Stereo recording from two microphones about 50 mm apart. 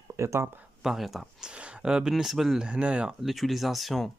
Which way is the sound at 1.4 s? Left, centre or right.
Right.